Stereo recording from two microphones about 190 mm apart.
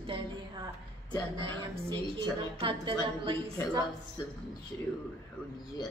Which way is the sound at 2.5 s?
30° right (ahead or behind).